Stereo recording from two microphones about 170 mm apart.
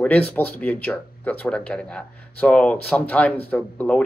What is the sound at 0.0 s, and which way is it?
Speech, 10° left (ahead or behind).